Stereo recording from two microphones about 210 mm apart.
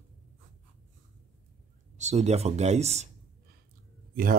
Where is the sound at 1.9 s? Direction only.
30° right (ahead or behind).